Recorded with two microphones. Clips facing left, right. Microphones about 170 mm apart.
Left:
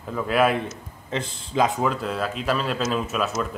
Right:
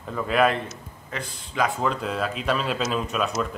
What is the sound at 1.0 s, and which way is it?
Speech, 25° left (ahead or behind).